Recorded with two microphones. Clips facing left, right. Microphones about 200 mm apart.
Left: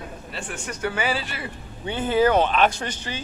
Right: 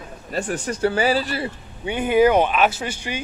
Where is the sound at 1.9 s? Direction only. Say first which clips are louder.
Right 3 dB; 15° right (ahead or behind).